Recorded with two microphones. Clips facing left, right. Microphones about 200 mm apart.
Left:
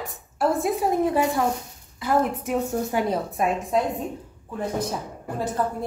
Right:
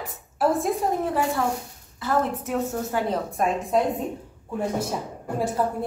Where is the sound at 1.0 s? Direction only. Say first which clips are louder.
Left 3 dB; 15° left (ahead or behind).